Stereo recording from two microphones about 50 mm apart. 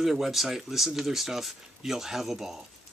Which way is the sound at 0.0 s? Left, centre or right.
Centre.